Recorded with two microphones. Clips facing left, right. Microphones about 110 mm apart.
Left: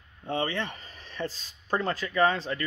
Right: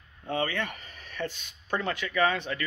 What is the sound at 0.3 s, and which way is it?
Speech, 25° left (ahead or behind).